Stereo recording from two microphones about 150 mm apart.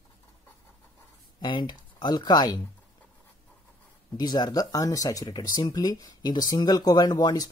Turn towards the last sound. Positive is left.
turn(degrees=25)  # may be behind; listen again after turning